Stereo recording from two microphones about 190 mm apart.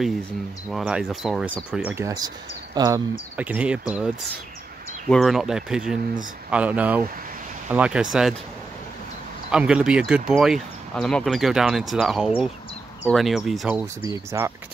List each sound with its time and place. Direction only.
0.7 s speech: centre (ahead or behind); by 3.0 s 20° right (ahead or behind)
3.3 s speech: 5° right (ahead or behind)
5.1 s speech: centre (ahead or behind)
9.5 s speech: 5° right (ahead or behind)